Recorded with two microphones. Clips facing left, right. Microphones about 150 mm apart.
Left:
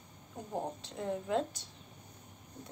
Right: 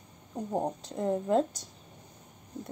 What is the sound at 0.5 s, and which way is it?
Speech, 40° right (ahead or behind).